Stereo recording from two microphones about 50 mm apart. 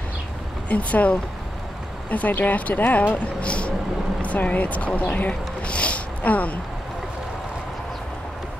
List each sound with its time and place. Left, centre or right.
0.7 s speech: left